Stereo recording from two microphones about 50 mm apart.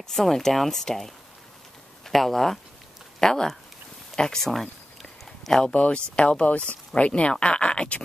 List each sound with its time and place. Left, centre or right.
0.1 s speech: centre
6.1 s speech: left